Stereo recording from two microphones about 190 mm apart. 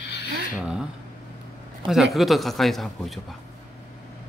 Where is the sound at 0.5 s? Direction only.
5° right (ahead or behind).